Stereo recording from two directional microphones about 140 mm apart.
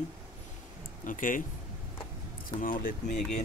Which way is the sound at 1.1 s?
75° left (ahead or behind).